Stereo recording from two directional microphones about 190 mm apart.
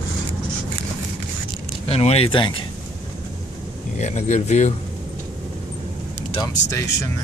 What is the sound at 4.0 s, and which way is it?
Speech, 35° left (ahead or behind).